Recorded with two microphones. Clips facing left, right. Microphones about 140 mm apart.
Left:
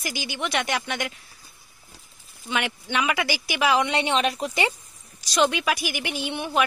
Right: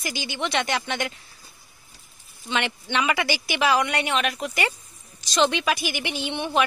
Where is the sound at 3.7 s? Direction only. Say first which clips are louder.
Left 1 dB; 20° left (ahead or behind).